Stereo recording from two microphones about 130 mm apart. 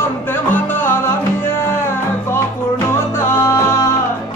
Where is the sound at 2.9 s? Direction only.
20° left (ahead or behind).